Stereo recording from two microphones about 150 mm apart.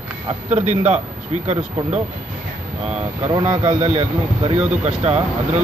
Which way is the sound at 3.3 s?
30° right (ahead or behind).